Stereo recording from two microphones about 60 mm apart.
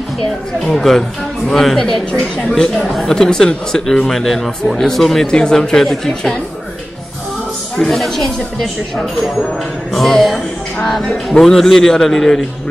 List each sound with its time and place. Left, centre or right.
0.7 s speech: centre
2.1 s a man's voice: centre
2.8 s a man's voice: centre
7.7 s a man's voice: centre